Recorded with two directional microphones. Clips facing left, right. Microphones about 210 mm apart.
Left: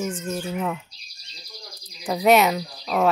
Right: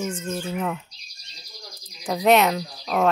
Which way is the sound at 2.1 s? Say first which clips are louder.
Left 1 dB; centre (ahead or behind).